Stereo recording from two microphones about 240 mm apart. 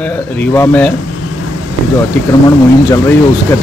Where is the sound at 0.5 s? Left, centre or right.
Centre.